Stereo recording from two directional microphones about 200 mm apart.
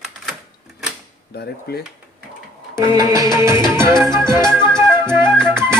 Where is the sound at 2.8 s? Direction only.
15° right (ahead or behind).